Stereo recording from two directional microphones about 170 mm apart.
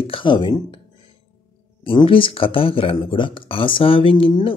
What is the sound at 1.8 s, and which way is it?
Speech, 30° left (ahead or behind).